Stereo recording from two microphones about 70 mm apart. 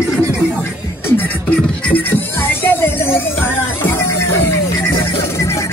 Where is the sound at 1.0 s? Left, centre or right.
Left.